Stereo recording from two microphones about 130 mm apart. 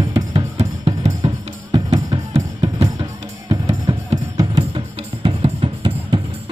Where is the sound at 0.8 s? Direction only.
40° right (ahead or behind).